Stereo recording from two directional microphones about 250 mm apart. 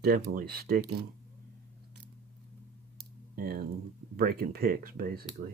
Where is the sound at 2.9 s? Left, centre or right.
Right.